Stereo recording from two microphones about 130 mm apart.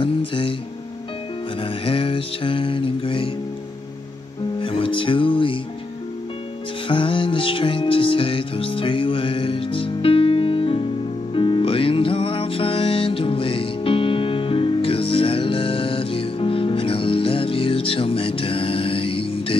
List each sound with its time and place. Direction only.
0.0 s music: 40° left (ahead or behind)
1.6 s music: 45° left (ahead or behind)
4.6 s speech: 40° left (ahead or behind)
6.9 s music: 40° left (ahead or behind)